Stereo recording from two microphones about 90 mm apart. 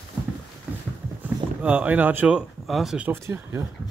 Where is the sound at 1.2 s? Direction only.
15° right (ahead or behind).